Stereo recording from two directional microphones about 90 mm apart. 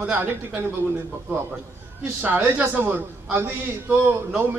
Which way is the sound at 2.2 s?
20° right (ahead or behind).